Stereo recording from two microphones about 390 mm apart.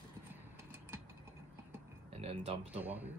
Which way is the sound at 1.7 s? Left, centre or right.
Centre.